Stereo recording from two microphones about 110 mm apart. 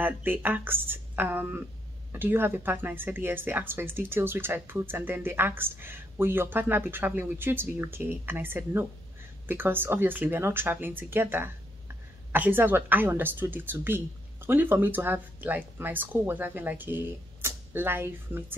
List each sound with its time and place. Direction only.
0.0 s a woman's voice: 15° right (ahead or behind)